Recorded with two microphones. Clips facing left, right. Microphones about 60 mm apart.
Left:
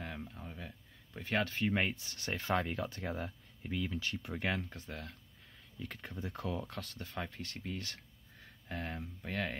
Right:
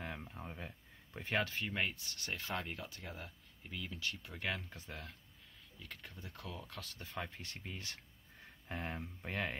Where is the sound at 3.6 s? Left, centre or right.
Left.